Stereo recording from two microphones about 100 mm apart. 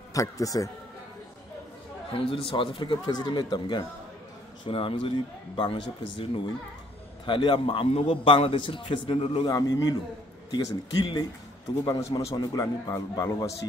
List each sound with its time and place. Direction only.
0.1 s a man's voice: 35° left (ahead or behind)
2.1 s speech: 65° left (ahead or behind); by 3.8 s 45° left (ahead or behind)
4.6 s a man's voice: 60° left (ahead or behind)
9.4 s a man's voice: 40° left (ahead or behind)